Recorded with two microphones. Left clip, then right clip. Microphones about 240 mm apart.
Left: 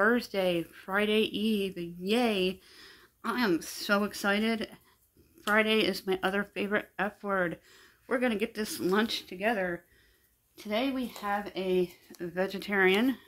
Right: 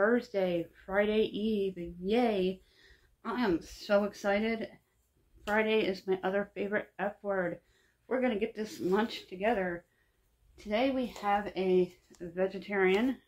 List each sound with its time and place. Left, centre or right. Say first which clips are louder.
0.0 s speech: left 2 dB; left
10.5 s speech: right 1 dB; left
12.2 s speech: left 1 dB; left